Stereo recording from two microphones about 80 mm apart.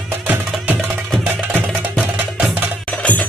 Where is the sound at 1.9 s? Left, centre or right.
Centre.